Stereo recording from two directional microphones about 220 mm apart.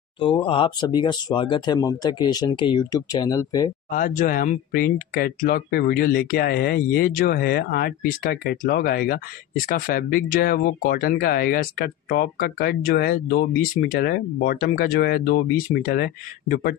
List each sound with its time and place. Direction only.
0.4 s speech: 25° left (ahead or behind)
3.9 s speech: 35° left (ahead or behind)